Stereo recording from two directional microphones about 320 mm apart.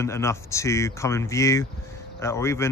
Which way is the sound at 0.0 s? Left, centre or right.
Centre.